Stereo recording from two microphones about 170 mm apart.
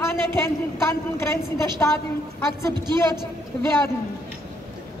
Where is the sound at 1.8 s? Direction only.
15° left (ahead or behind).